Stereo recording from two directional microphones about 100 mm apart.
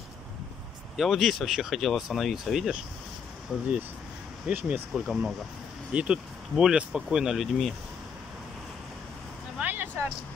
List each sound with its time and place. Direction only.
0.9 s speech: centre (ahead or behind)
4.5 s speech: 15° right (ahead or behind)
4.9 s speech: 5° right (ahead or behind)
9.6 s a sound: 20° right (ahead or behind)